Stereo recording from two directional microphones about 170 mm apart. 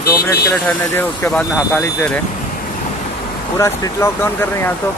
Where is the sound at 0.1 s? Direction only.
20° left (ahead or behind).